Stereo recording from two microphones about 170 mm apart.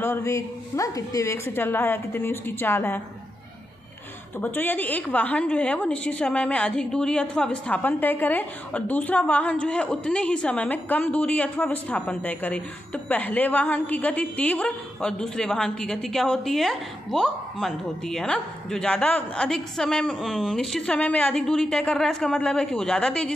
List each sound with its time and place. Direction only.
0.0 s a woman's voice: 15° left (ahead or behind)
4.4 s a woman's voice: 10° left (ahead or behind)